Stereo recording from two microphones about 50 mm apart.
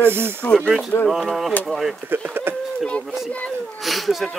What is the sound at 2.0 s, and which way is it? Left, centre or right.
Speech, right.